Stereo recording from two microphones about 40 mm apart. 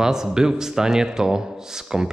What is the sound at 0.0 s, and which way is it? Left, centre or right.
Speech, centre.